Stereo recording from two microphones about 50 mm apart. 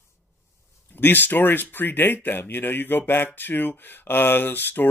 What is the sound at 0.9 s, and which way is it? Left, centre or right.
Speech, left.